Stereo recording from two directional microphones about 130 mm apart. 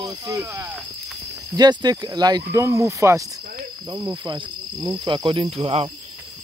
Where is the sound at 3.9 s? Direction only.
35° right (ahead or behind); by 5.8 s 50° right (ahead or behind).